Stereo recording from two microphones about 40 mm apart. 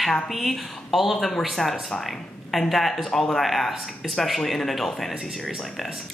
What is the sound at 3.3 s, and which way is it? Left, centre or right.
Speech, centre.